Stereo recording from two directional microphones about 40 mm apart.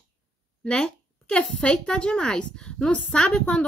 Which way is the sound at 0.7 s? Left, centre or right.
Left.